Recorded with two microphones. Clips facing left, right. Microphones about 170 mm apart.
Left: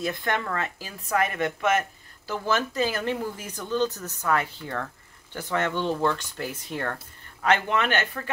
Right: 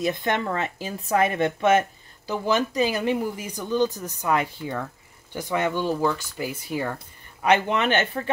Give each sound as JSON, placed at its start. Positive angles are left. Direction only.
{"t": 0.0, "sound": "speech", "side_deg": -20}
{"t": 2.3, "sound": "speech", "side_deg": -15}